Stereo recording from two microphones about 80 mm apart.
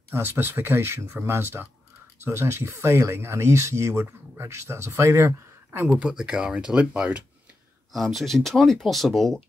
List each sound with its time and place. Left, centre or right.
0.1 s speech: right
5.9 s speech: centre
7.9 s speech: centre